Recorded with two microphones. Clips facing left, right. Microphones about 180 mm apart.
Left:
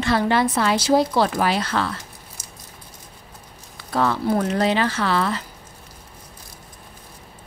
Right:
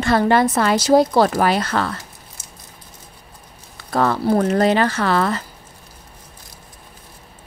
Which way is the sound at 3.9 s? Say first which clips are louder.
Right 3 dB; 50° right (ahead or behind).